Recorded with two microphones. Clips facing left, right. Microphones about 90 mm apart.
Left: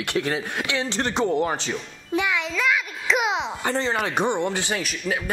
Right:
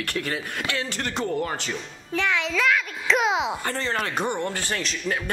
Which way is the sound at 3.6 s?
20° left (ahead or behind).